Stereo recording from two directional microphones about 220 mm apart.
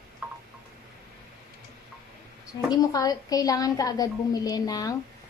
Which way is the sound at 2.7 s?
15° left (ahead or behind).